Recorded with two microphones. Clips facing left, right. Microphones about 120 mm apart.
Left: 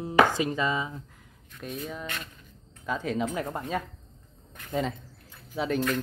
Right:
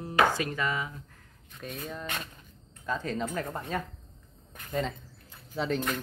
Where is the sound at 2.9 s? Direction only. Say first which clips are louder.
Left 3 dB; 5° left (ahead or behind).